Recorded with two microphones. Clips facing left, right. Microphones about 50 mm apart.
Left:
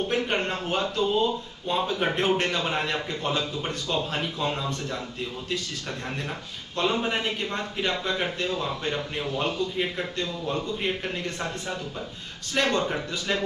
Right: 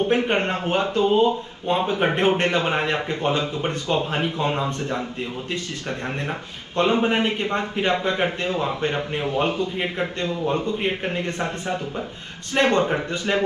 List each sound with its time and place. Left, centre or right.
0.0 s speech: right
6.8 s speech: right